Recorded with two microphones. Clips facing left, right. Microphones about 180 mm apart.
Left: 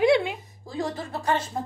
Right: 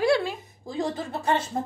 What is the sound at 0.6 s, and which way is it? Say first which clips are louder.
Speech: right 2 dB; 20° right (ahead or behind).